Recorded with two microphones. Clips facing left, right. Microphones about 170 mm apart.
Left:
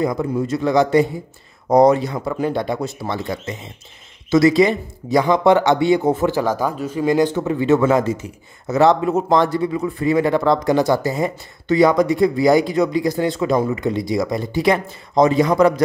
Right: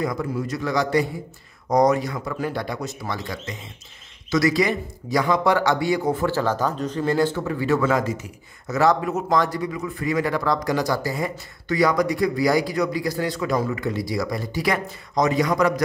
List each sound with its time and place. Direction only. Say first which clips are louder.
0.0 s speech: left 5 dB; 25° left (ahead or behind)